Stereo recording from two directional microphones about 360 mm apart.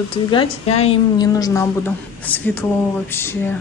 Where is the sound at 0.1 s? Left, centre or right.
Centre.